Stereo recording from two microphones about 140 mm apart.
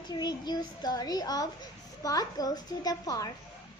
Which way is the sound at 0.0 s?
30° left (ahead or behind).